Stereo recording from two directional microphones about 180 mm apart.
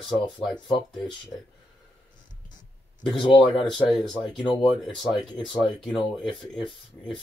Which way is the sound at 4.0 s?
Centre (ahead or behind).